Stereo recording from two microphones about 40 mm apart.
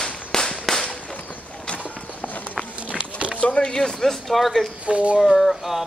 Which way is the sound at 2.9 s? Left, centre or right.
Right.